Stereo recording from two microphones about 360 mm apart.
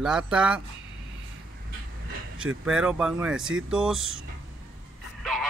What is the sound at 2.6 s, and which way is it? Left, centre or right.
Speech, centre.